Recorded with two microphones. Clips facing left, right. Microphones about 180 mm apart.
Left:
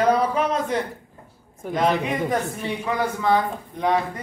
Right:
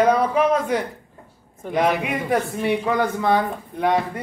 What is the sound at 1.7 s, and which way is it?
A man's voice, 15° right (ahead or behind).